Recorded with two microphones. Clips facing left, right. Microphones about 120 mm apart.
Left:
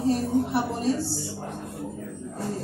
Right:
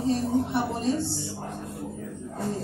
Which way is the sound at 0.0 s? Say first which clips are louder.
Left 1 dB; 5° left (ahead or behind).